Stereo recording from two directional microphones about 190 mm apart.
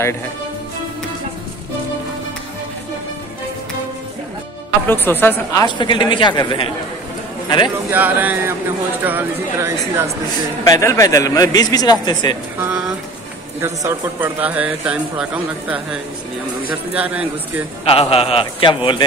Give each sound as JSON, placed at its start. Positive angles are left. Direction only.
{"t": 4.8, "sound": "a woman's voice", "side_deg": 10}
{"t": 7.9, "sound": "a man's voice", "side_deg": -10}
{"t": 10.6, "sound": "a woman's voice", "side_deg": 15}
{"t": 12.5, "sound": "a man's voice", "side_deg": -10}
{"t": 17.8, "sound": "a woman's voice", "side_deg": 30}